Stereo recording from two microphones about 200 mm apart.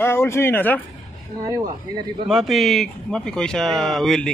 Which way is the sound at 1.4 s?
20° right (ahead or behind).